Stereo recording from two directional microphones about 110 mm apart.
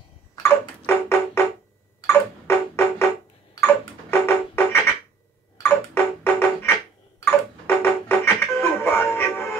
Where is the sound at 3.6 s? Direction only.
20° left (ahead or behind).